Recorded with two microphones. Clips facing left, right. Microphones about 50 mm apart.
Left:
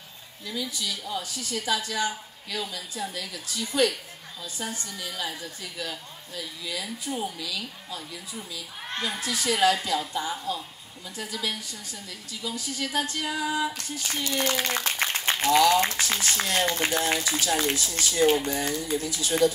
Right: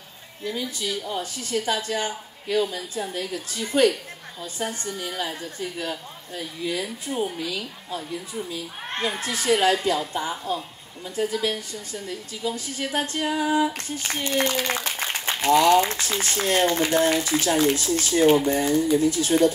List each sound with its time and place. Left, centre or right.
0.4 s a woman's voice: right
14.8 s a sound: right
15.9 s a woman's voice: right